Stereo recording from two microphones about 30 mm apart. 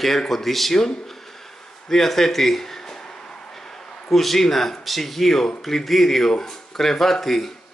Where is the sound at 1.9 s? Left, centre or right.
Centre.